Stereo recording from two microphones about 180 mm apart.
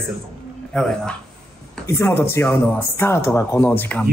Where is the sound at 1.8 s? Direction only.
15° left (ahead or behind).